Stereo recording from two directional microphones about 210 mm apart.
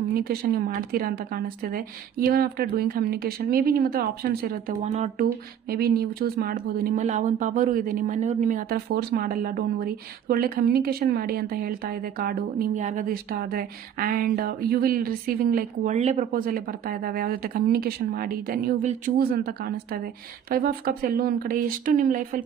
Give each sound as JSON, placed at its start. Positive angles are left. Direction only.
{"t": 0.1, "sound": "speech", "side_deg": -45}